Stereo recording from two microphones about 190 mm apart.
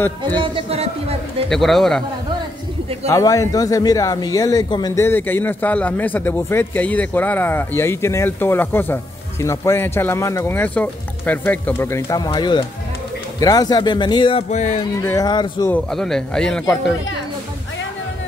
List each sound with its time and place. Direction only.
0.4 s speech: 30° right (ahead or behind)
1.5 s speech: centre (ahead or behind)
3.1 s a man's voice: 15° left (ahead or behind)
14.5 s speech: 35° left (ahead or behind)
15.0 s speech: 15° left (ahead or behind)
15.7 s speech: centre (ahead or behind)